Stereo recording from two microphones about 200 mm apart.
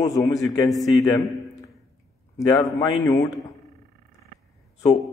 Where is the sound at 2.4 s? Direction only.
20° left (ahead or behind).